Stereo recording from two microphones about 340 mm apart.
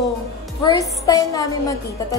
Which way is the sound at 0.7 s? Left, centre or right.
Centre.